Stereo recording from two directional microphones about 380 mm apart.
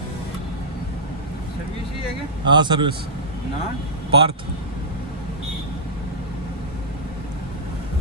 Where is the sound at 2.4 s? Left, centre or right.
Centre.